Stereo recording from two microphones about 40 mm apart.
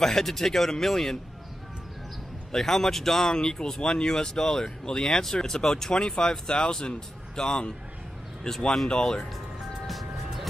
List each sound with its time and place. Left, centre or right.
0.0 s speech: centre
2.5 s speech: centre
9.8 s music: centre